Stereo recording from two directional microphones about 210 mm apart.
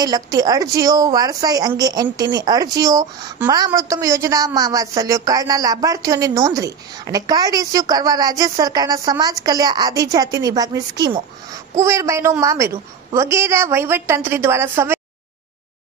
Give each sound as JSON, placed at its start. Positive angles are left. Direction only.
{"t": 0.0, "sound": "a woman's voice", "side_deg": -20}